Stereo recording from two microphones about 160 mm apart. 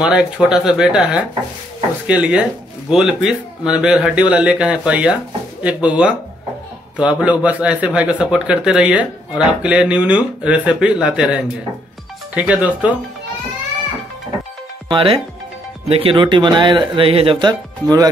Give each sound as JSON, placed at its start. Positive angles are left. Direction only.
{"t": 0.0, "sound": "speech", "side_deg": -5}
{"t": 14.9, "sound": "speech", "side_deg": -35}